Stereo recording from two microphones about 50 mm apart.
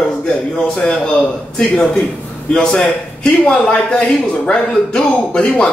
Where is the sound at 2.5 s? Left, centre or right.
Centre.